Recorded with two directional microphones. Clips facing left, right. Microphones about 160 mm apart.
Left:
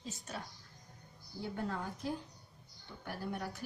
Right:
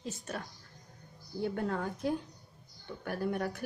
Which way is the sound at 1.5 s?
60° right (ahead or behind).